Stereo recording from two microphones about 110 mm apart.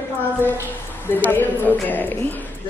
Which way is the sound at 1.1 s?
20° left (ahead or behind).